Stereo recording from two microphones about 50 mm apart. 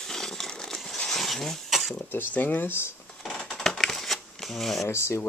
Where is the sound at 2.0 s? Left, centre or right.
Left.